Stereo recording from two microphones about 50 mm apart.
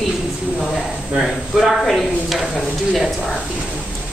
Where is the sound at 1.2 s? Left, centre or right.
Centre.